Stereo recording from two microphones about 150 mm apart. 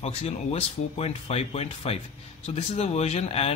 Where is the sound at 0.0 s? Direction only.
45° left (ahead or behind).